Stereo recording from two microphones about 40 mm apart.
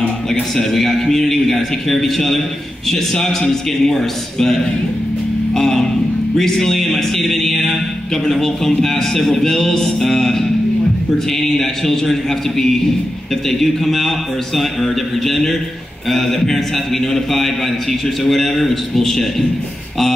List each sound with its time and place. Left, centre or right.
0.3 s a man's voice: centre